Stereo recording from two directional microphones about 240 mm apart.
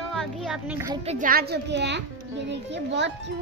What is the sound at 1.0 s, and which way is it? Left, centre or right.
A child's voice, right.